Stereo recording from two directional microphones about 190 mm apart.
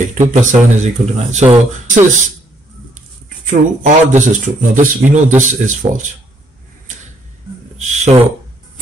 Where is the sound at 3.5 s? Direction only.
40° right (ahead or behind).